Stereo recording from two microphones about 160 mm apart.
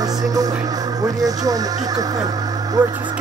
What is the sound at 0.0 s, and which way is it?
Music, 25° right (ahead or behind).